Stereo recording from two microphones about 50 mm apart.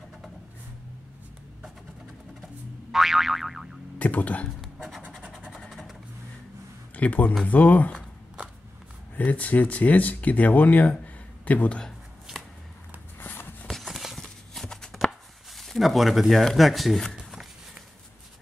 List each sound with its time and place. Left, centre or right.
2.9 s boing: centre
4.0 s speech: left
4.6 s scratch: centre
5.6 s vehicle: centre
7.0 s speech: left
9.1 s speech: left
13.2 s a sound: left
13.7 s clip-clop: centre
14.2 s a sound: centre
16.5 s speech: centre
17.0 s a sound: centre